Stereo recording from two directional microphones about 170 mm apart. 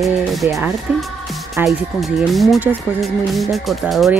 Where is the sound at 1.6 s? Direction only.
10° right (ahead or behind).